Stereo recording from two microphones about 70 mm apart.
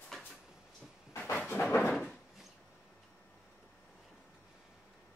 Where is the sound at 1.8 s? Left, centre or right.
Centre.